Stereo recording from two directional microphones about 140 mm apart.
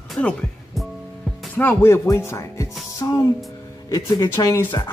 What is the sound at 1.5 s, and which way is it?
Speech, 15° left (ahead or behind).